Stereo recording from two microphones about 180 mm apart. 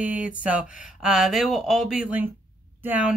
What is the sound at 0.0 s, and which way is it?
Speech, 5° right (ahead or behind).